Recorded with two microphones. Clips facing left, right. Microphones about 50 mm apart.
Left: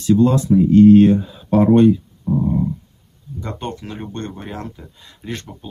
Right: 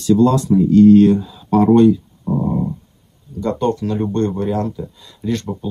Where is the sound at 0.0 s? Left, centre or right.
Left.